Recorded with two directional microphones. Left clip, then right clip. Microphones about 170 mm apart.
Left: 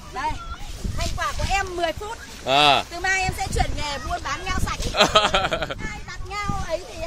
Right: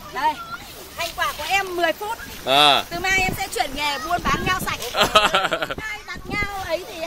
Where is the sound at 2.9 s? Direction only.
15° right (ahead or behind).